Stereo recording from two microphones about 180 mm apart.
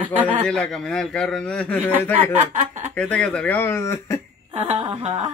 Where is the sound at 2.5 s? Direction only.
40° right (ahead or behind).